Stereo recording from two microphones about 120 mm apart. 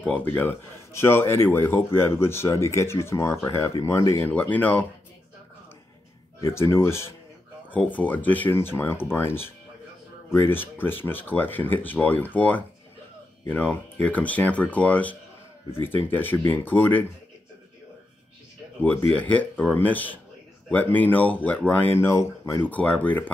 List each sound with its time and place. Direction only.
0.0 s speech: 15° left (ahead or behind)
6.4 s speech: 20° left (ahead or behind)
18.8 s speech: 15° left (ahead or behind)